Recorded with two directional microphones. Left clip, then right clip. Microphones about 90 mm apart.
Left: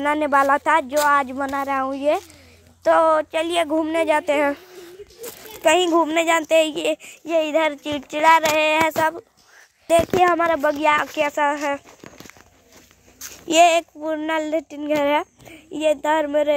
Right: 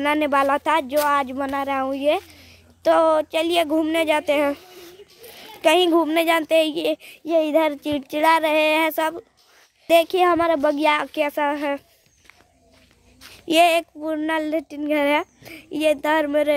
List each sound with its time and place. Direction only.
0.0 s speech: 20° right (ahead or behind)
2.8 s speech: 45° right (ahead or behind)
3.1 s speech: 25° right (ahead or behind)
4.1 s speech: 5° right (ahead or behind)
5.8 s speech: 40° right (ahead or behind)
7.2 s a sound: 80° right; by 8.9 s 55° right (ahead or behind)
10.3 s speech: 85° right; by 11.2 s 65° right (ahead or behind)
11.2 s speech: 45° right (ahead or behind)
13.5 s speech: 25° right (ahead or behind)
16.3 s speech: 35° right (ahead or behind)